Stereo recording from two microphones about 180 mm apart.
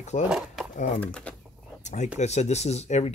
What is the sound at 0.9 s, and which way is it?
Speech, 5° left (ahead or behind).